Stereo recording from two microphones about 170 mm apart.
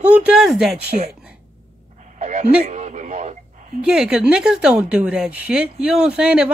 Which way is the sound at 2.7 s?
45° right (ahead or behind).